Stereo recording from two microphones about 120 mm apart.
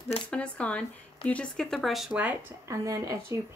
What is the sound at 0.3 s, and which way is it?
Speech, 10° left (ahead or behind).